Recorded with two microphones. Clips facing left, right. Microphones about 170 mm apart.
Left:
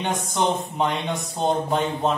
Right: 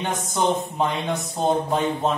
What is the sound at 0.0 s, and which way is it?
Speech, centre (ahead or behind).